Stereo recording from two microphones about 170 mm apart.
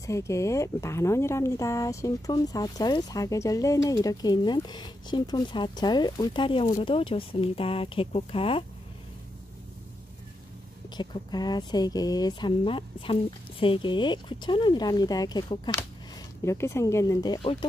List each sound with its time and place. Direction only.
0.0 s speech: 15° left (ahead or behind); by 8.6 s 35° left (ahead or behind)
11.0 s speech: 25° left (ahead or behind)